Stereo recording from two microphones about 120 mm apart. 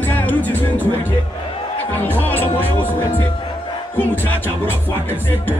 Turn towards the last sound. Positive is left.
turn(degrees=15)  # may be behind; listen again after turning